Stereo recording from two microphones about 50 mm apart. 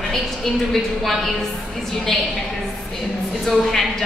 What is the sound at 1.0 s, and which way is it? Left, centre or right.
Speech, centre.